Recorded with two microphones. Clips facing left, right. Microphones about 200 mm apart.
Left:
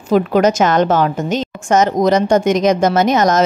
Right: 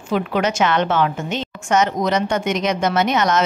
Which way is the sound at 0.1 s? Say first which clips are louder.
Left 7 dB; 40° left (ahead or behind).